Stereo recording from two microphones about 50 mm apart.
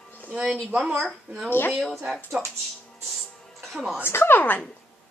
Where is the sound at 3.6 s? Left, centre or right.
Centre.